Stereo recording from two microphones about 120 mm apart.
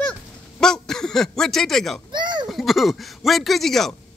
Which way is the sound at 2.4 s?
Centre (ahead or behind).